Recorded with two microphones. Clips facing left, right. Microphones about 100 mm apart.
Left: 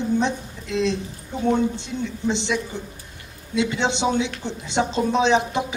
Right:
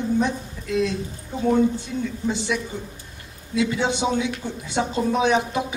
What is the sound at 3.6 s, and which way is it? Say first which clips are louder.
Speech: even; 25° left (ahead or behind).